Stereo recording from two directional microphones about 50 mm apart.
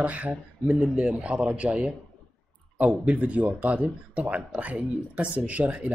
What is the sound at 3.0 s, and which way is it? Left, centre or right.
Speech, right.